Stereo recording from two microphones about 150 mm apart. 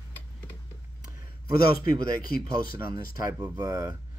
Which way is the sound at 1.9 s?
75° left (ahead or behind).